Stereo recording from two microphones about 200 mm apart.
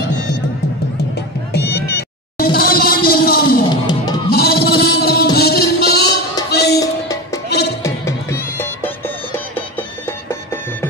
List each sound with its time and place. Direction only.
1.5 s music: 55° left (ahead or behind)
3.8 s music: 20° left (ahead or behind)
4.3 s music: 50° left (ahead or behind)
7.8 s music: 15° left (ahead or behind)